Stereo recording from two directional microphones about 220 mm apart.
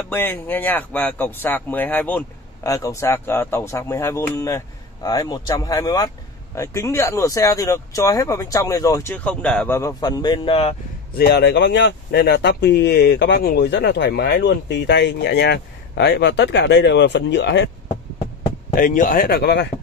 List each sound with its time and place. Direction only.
0.1 s speech: 10° left (ahead or behind); by 10.8 s 25° left (ahead or behind)
11.1 s speech: 50° left (ahead or behind)
18.8 s speech: 40° left (ahead or behind)